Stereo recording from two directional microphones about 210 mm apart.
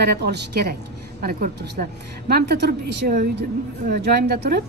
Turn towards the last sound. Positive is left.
turn(degrees=-50)  # may be behind; listen again after turning